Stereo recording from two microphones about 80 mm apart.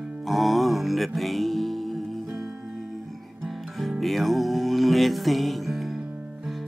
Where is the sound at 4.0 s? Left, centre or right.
Centre.